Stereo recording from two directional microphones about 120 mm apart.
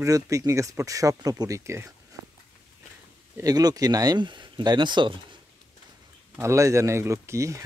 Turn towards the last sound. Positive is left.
turn(degrees=-25)  # may be behind; listen again after turning